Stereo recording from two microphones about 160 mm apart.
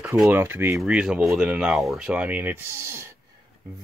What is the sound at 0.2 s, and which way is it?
Speech, 10° right (ahead or behind).